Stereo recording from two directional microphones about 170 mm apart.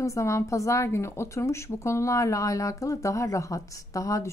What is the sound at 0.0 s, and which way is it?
A woman's voice, 15° left (ahead or behind).